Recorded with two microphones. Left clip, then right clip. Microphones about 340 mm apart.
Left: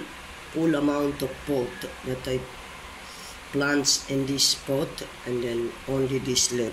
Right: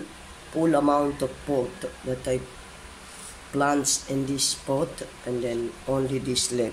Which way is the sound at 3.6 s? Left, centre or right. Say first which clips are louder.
Even; centre.